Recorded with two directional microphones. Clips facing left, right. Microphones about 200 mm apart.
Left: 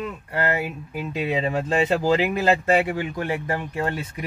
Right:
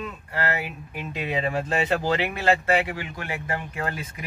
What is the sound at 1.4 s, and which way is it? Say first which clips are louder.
Speech: left 2 dB; 30° left (ahead or behind).